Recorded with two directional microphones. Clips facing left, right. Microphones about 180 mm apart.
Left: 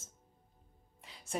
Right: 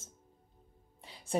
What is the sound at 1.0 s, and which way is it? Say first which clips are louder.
Music: right 7 dB; 30° right (ahead or behind).